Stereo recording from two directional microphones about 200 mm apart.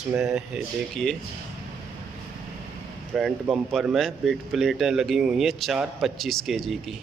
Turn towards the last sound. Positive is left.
turn(degrees=0)  # may be behind; listen again after turning